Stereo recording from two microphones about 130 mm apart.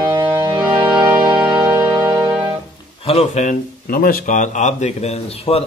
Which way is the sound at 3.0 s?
60° left (ahead or behind).